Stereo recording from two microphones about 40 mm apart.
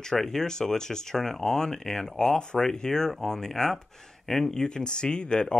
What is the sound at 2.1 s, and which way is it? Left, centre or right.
Speech, centre.